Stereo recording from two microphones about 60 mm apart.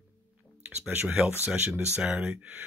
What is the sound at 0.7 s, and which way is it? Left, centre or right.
Speech, right.